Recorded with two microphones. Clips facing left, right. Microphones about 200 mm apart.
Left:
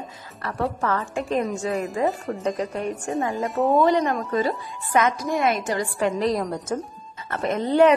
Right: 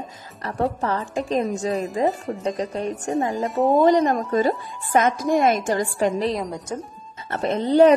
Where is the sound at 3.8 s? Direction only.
45° right (ahead or behind).